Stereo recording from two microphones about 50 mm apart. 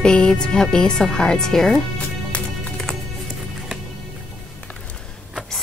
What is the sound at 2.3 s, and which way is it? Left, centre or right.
Music, left.